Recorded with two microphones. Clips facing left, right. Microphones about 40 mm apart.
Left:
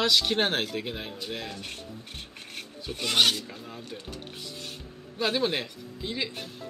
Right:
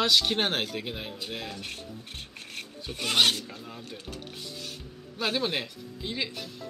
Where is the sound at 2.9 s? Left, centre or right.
Centre.